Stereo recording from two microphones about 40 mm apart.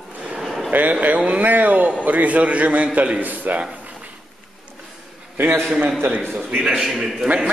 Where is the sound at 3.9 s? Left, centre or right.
Right.